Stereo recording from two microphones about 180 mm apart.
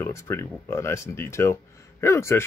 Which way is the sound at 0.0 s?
15° left (ahead or behind).